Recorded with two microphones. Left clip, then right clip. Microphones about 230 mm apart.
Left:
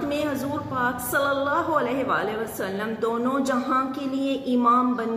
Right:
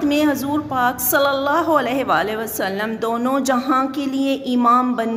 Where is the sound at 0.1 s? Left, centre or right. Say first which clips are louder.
Right 8 dB; right.